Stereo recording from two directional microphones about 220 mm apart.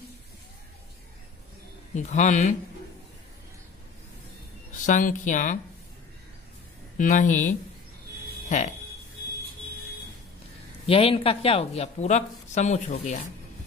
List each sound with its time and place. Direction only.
2.0 s speech: 35° left (ahead or behind)
4.7 s speech: 35° left (ahead or behind)
7.0 s speech: 35° left (ahead or behind)
10.9 s speech: 25° left (ahead or behind)